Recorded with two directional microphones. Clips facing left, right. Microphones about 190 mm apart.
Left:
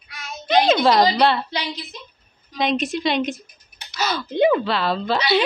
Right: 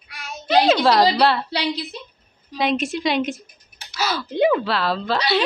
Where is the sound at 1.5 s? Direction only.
35° right (ahead or behind).